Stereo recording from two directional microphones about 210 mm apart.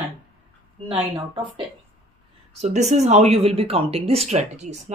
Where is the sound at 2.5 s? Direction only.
35° right (ahead or behind).